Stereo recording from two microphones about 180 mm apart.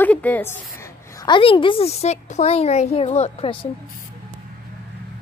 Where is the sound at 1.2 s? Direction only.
25° left (ahead or behind).